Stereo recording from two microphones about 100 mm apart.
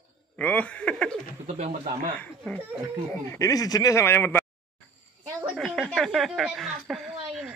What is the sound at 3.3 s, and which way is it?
Speech, 35° left (ahead or behind).